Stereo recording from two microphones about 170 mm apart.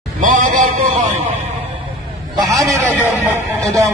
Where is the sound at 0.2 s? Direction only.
50° right (ahead or behind).